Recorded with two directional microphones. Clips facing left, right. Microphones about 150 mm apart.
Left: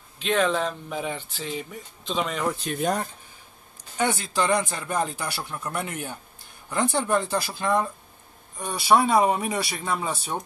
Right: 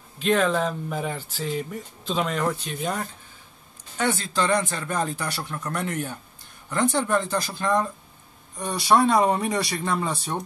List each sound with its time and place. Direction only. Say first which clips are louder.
0.2 s speech: right 2 dB; centre (ahead or behind)
2.6 s speech: left 4 dB; 50° left (ahead or behind)
4.0 s speech: even; 10° left (ahead or behind)